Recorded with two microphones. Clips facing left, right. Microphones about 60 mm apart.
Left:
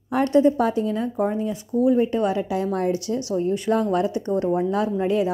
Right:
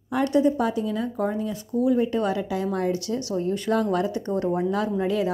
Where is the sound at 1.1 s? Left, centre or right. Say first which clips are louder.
Left 3 dB; left.